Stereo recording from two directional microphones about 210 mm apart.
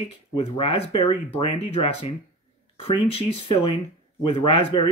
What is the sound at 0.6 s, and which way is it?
Speech, 25° left (ahead or behind).